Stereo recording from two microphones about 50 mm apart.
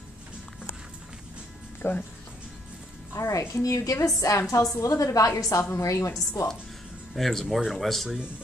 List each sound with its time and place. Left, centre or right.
1.8 s speech: left
3.2 s a woman's voice: left
7.2 s speech: centre